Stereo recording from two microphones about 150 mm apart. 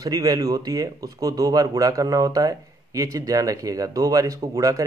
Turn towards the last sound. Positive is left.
turn(degrees=-25)  # may be behind; listen again after turning